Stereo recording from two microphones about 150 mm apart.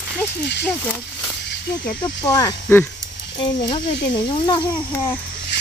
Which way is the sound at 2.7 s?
15° left (ahead or behind).